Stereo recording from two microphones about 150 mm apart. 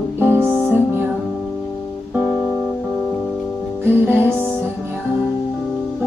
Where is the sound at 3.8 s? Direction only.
15° right (ahead or behind).